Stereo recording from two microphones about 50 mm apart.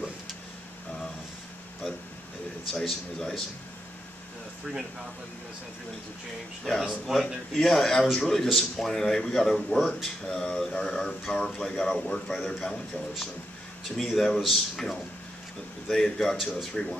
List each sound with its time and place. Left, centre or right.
2.7 s speech: centre
6.6 s speech: centre
7.1 s speech: centre
7.5 s speech: centre
13.8 s speech: centre